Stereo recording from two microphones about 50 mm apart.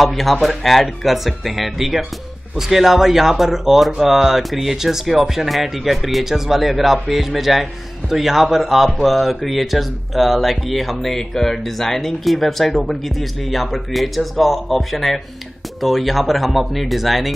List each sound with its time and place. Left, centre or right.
0.0 s speech: centre